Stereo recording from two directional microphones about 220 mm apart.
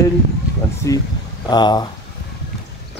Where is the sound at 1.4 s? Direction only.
20° left (ahead or behind).